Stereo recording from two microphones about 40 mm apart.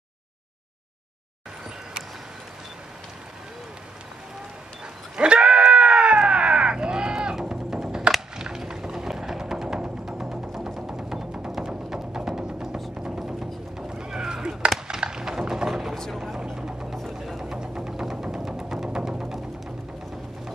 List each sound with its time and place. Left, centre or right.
5.1 s screaming: right
8.4 s music: centre
13.8 s a sound: right
15.9 s vehicle: centre
16.5 s music: centre